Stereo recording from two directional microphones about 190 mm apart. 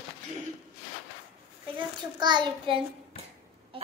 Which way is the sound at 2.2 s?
25° right (ahead or behind).